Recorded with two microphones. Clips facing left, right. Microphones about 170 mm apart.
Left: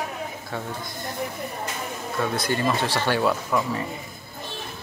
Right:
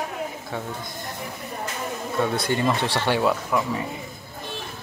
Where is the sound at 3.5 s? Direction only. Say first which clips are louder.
Even; 5° right (ahead or behind).